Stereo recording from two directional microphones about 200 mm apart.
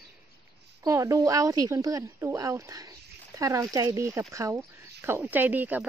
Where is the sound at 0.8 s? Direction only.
15° right (ahead or behind).